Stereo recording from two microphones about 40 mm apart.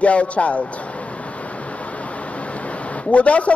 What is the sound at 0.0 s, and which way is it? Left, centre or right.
Speech, left.